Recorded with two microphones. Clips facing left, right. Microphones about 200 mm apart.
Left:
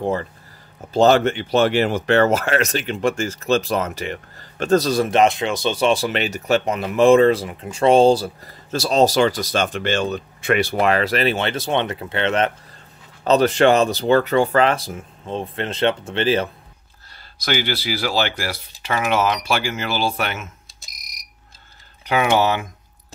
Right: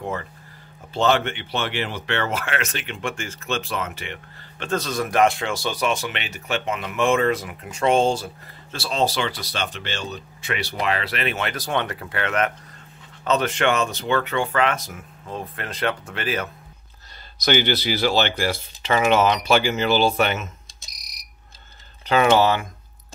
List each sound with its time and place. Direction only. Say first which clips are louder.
0.0 s speech: left 7 dB; 35° left (ahead or behind)
17.5 s speech: right 2 dB; 5° left (ahead or behind)
22.0 s speech: right 1 dB; 15° left (ahead or behind)